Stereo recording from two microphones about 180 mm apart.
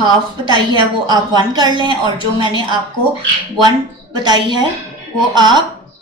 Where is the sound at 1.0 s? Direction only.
25° right (ahead or behind).